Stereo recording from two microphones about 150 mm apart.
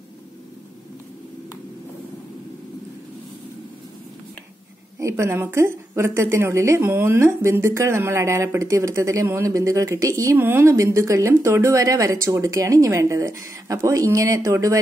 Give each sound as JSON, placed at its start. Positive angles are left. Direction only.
{"t": 4.9, "sound": "a woman's voice", "side_deg": -20}